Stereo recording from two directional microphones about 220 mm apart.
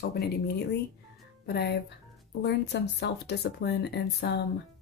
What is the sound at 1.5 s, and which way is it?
Speech, 50° left (ahead or behind).